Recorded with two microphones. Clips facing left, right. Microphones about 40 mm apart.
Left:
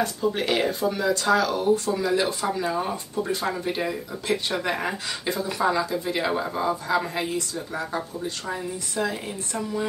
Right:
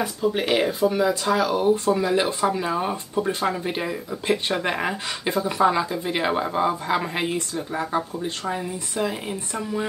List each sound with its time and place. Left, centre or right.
0.0 s speech: centre
2.9 s speech: right; by 9.8 s centre